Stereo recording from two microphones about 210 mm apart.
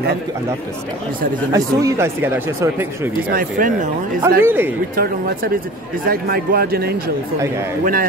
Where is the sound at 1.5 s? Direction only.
15° right (ahead or behind).